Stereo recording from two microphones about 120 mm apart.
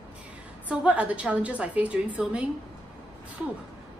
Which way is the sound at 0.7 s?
10° right (ahead or behind).